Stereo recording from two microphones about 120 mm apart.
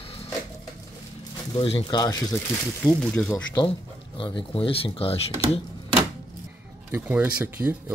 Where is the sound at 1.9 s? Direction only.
30° left (ahead or behind).